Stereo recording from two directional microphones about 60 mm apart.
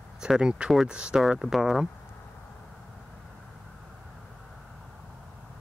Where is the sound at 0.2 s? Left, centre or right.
Centre.